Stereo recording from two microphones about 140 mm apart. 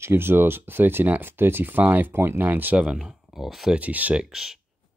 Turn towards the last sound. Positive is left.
turn(degrees=-5)  # may be behind; listen again after turning